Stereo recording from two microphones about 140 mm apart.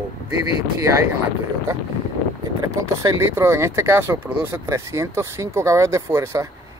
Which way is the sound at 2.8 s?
20° right (ahead or behind).